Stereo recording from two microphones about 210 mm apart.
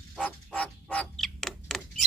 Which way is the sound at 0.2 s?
Centre (ahead or behind).